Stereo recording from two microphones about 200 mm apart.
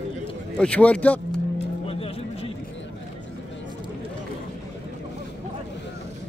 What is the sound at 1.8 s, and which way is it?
Music, 30° left (ahead or behind).